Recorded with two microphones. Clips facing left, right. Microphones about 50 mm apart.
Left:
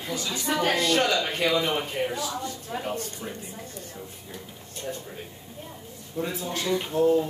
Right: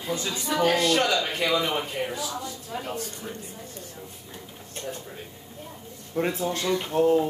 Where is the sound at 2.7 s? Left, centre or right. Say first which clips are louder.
Left 2 dB; centre.